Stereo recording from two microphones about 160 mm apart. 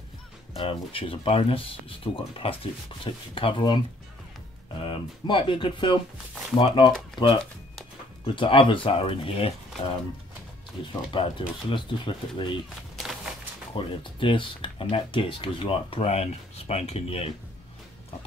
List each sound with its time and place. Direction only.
0.6 s speech: 35° left (ahead or behind)
4.8 s speech: 30° left (ahead or behind)
8.4 s speech: 30° left (ahead or behind)
10.9 s speech: 30° left (ahead or behind)
12.9 s walk: centre (ahead or behind)
13.7 s speech: 30° left (ahead or behind)